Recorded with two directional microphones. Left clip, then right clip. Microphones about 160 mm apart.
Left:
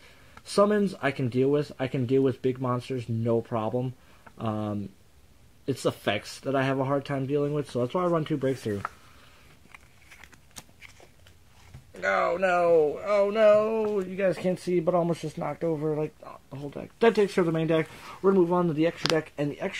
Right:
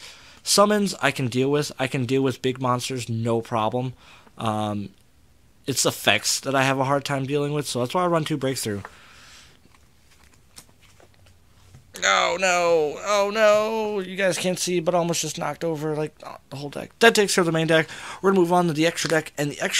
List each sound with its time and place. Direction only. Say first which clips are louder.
0.6 s speech: right 4 dB; 15° right (ahead or behind)
11.9 s speech: right 5 dB; centre (ahead or behind)
16.2 s speech: right 5 dB; 20° right (ahead or behind)